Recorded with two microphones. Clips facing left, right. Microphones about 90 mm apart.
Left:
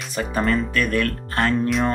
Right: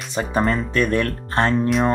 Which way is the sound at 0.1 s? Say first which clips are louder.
Right 1 dB; 25° right (ahead or behind).